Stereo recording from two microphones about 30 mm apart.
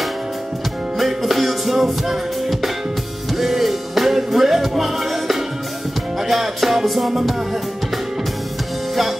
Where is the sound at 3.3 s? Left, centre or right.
Centre.